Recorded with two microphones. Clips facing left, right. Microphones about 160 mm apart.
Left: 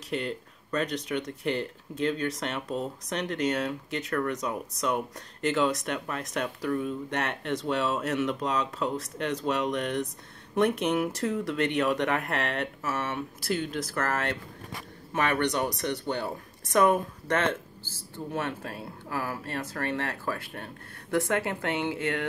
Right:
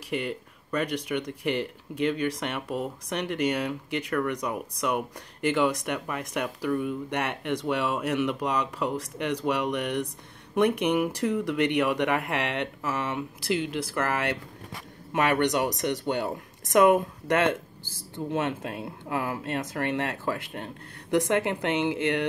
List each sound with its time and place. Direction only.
0.1 s speech: 10° right (ahead or behind)
17.5 s speech: 15° right (ahead or behind)